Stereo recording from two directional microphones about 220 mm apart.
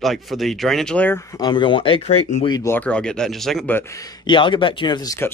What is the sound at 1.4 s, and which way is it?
Speech, 20° left (ahead or behind).